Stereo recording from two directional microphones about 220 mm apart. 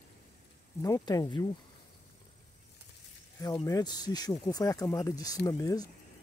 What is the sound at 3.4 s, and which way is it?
Speech, 15° left (ahead or behind).